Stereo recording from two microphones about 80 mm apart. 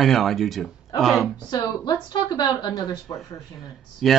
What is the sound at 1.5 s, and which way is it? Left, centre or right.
Speech, left.